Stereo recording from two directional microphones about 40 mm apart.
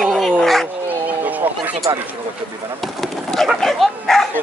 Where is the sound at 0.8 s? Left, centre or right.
Right.